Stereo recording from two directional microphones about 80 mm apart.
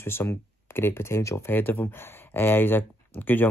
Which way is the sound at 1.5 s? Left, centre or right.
Left.